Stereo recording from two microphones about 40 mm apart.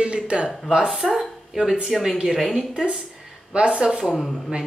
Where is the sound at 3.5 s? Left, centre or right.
Right.